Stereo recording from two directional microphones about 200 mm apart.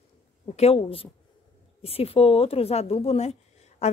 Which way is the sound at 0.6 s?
30° left (ahead or behind).